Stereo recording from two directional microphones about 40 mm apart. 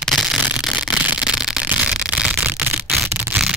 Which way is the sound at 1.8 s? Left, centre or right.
Right.